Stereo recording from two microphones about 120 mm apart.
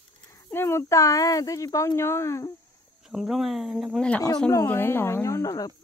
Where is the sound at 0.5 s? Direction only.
20° left (ahead or behind).